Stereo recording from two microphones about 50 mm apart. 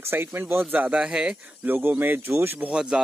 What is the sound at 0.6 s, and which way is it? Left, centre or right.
Speech, right.